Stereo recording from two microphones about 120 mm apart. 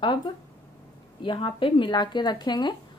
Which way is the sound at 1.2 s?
45° left (ahead or behind).